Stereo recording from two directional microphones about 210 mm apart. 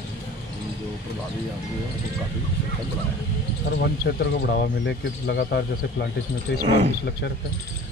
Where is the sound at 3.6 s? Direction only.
55° left (ahead or behind).